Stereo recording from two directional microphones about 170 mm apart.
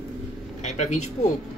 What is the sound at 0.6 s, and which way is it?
Speech, 40° left (ahead or behind).